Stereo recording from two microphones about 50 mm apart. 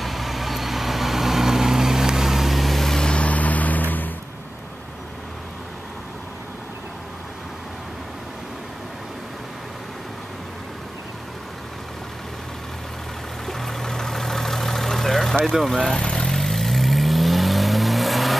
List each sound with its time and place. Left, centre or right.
0.0 s vehicle: centre
3.1 s vehicle: left
13.5 s vehicle: centre
15.4 s speech: centre
15.8 s vehicle: centre